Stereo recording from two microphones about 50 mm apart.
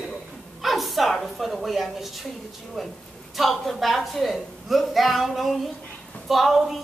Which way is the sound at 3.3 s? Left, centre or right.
Centre.